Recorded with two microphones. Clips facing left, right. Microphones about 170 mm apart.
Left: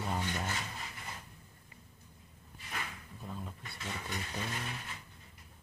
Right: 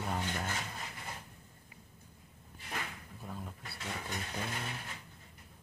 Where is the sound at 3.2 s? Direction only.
5° right (ahead or behind).